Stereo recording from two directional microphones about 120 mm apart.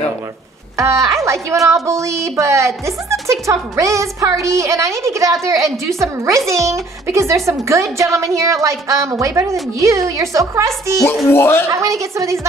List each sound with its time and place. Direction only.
0.7 s a woman's voice: 25° right (ahead or behind)
11.2 s speech: 20° left (ahead or behind)
11.7 s a woman's voice: 25° right (ahead or behind)